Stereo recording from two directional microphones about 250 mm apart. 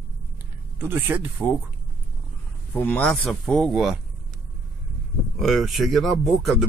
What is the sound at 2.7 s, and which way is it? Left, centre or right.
Speech, centre.